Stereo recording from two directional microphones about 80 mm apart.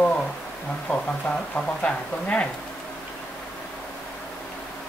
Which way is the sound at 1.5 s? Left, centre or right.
Centre.